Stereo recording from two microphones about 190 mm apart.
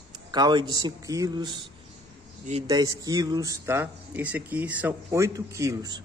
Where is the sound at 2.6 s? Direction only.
20° right (ahead or behind).